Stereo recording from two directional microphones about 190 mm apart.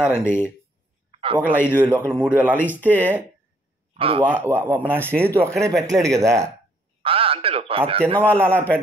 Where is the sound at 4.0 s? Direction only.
30° right (ahead or behind).